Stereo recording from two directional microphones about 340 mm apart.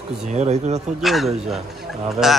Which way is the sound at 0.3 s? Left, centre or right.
Centre.